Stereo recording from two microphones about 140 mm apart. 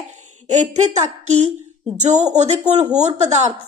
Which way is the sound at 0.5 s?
55° right (ahead or behind).